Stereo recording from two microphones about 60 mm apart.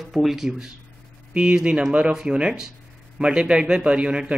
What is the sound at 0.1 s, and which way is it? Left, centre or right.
Speech, centre.